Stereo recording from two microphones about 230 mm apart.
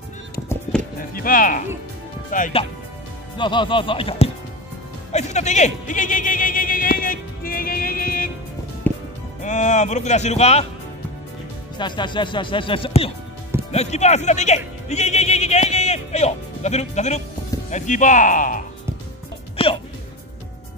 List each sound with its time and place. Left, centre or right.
0.5 s music: centre
1.1 s speech: left
3.3 s speech: left
9.4 s speech: left
11.8 s speech: centre; by 18.6 s left
19.5 s music: left